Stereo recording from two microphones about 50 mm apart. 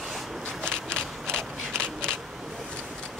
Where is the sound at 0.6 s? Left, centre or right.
Centre.